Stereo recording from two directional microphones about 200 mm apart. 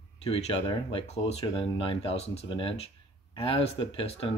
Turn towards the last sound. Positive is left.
turn(degrees=30)  # may be behind; listen again after turning